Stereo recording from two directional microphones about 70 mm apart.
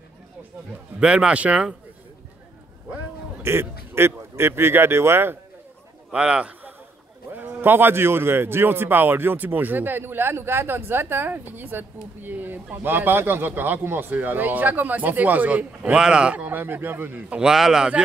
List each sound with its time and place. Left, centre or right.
0.9 s speech: centre
3.4 s a man's voice: right
6.1 s a man's voice: centre
17.3 s speech: centre